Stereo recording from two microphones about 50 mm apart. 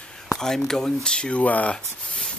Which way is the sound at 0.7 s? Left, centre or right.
Centre.